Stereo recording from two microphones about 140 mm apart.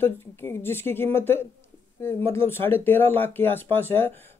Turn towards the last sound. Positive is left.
turn(degrees=15)  # may be behind; listen again after turning